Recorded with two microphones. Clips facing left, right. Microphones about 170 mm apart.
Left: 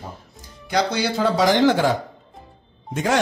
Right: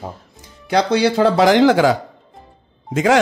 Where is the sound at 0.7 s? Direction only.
65° right (ahead or behind); by 1.9 s 90° right.